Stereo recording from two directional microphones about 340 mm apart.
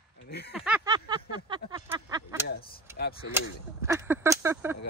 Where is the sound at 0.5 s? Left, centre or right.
Centre.